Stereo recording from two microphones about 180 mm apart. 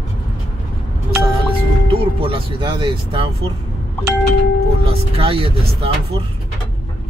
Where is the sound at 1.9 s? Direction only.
30° right (ahead or behind).